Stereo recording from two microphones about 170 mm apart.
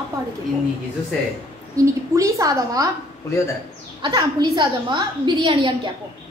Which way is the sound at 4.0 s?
25° right (ahead or behind).